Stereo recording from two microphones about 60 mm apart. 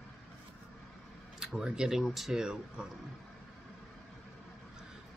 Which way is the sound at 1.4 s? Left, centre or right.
Centre.